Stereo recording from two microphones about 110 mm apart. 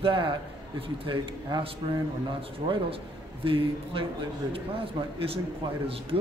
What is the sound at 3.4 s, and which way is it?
A man's voice, 55° right (ahead or behind).